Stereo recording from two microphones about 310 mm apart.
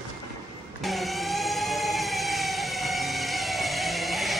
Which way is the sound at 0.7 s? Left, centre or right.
Centre.